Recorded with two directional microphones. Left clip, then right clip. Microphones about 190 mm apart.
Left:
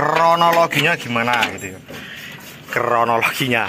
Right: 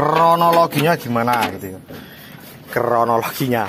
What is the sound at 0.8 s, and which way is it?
Speech, 40° right (ahead or behind).